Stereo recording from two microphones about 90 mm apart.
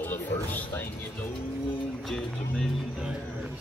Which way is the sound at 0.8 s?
25° left (ahead or behind).